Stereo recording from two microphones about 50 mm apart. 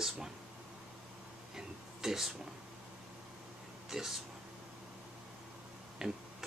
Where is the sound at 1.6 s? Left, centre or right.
Centre.